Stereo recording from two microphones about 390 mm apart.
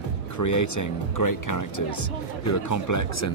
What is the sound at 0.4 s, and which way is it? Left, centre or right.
A man's voice, left.